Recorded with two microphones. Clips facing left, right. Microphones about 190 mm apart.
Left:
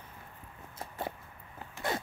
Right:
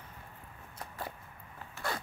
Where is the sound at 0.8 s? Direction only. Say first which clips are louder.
Left 4 dB; 25° left (ahead or behind).